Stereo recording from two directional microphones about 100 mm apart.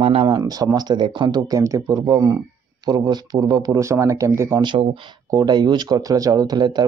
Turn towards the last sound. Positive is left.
turn(degrees=-45)  # may be behind; listen again after turning